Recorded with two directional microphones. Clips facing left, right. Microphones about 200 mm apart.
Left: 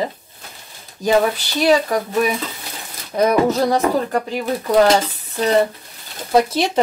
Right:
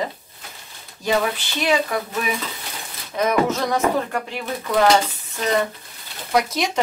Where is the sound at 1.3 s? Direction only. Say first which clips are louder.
Left 5 dB; 40° left (ahead or behind).